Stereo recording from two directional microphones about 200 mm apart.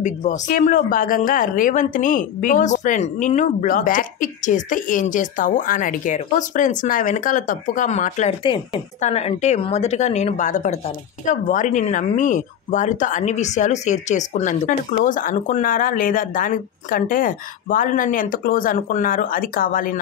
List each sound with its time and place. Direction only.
0.0 s speech: 35° left (ahead or behind)